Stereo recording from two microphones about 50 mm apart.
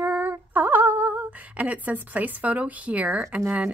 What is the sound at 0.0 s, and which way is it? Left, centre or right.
Female singing, right.